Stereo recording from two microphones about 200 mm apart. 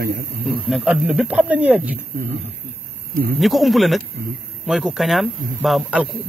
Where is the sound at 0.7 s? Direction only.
Centre (ahead or behind).